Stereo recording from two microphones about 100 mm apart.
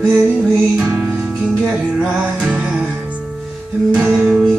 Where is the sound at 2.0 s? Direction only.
10° right (ahead or behind).